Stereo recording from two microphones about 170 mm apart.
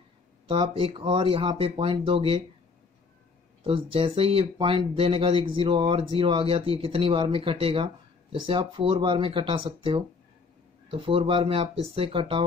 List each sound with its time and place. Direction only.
0.5 s speech: 30° right (ahead or behind)
3.6 s speech: 30° right (ahead or behind)